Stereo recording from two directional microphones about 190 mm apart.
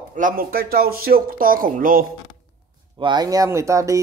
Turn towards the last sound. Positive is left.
turn(degrees=-15)  # may be behind; listen again after turning